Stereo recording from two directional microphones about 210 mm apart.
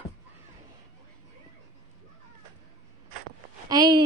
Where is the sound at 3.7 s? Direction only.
20° right (ahead or behind).